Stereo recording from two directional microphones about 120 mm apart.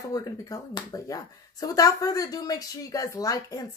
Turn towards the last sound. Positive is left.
turn(degrees=30)  # may be behind; listen again after turning